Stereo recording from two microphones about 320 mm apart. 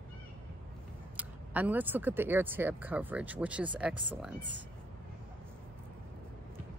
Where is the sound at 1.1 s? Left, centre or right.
Centre.